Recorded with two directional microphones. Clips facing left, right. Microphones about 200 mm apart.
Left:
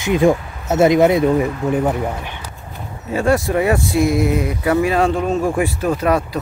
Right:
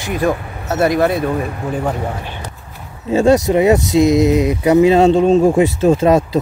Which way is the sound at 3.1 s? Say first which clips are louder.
Right 5 dB; 20° right (ahead or behind).